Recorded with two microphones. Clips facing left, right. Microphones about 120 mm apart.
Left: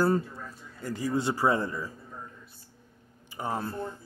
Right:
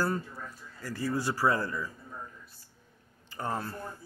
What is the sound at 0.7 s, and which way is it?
Speech, 20° left (ahead or behind).